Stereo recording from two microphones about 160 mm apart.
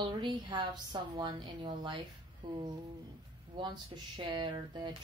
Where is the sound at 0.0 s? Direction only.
25° right (ahead or behind).